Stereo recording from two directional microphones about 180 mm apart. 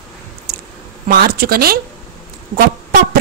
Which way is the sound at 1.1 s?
55° right (ahead or behind).